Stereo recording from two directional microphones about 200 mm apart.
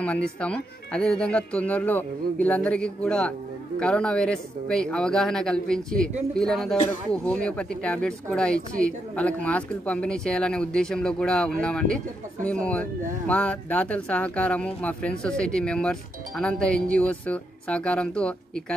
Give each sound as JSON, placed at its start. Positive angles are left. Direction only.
{"t": 0.0, "sound": "speech", "side_deg": 5}